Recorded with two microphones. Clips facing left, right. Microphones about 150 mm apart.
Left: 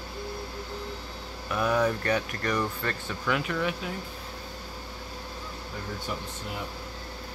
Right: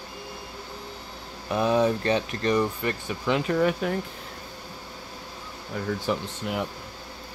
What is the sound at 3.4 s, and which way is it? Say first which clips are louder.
Speech: right 7 dB; 45° right (ahead or behind).